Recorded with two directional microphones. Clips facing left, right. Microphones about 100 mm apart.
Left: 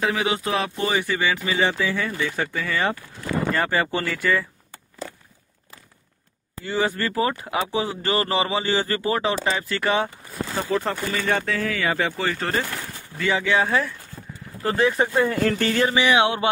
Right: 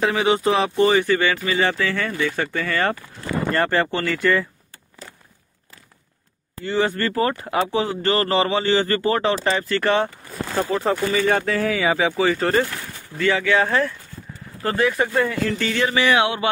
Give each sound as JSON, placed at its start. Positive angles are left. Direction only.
{"t": 0.0, "sound": "speech", "side_deg": 0}
{"t": 6.6, "sound": "speech", "side_deg": 15}
{"t": 10.8, "sound": "speech", "side_deg": -5}
{"t": 13.2, "sound": "speech", "side_deg": 20}
{"t": 13.7, "sound": "speech", "side_deg": 5}
{"t": 14.8, "sound": "speech", "side_deg": 25}
{"t": 15.4, "sound": "speech", "side_deg": 45}
{"t": 15.9, "sound": "speech", "side_deg": 20}